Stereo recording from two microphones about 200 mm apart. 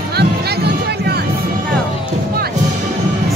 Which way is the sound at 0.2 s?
55° right (ahead or behind).